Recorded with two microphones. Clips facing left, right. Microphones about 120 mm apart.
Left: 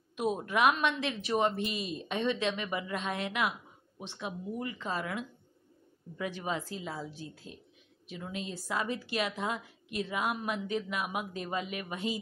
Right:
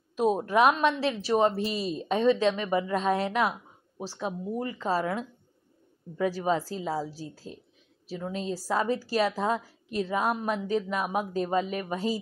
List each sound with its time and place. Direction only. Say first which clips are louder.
0.1 s a woman's voice: right 7 dB; 35° right (ahead or behind)